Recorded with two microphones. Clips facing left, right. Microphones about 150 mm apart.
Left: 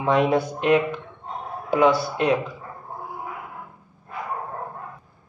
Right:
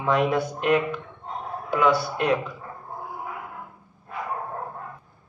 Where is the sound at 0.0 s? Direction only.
30° left (ahead or behind).